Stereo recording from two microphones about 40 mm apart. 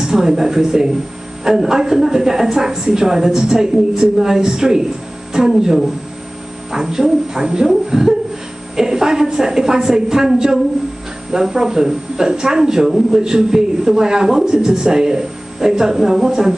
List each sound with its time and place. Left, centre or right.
0.0 s speech: centre